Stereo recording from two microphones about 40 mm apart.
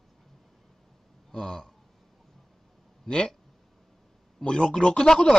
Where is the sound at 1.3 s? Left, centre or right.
Centre.